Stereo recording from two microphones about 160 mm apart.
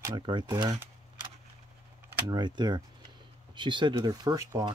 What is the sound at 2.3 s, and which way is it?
Speech, 25° right (ahead or behind).